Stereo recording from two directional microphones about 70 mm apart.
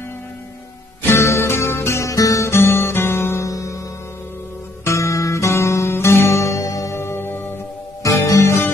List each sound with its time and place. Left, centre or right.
1.0 s music: left
3.4 s music: left
4.8 s music: left
7.0 s music: left
8.0 s music: left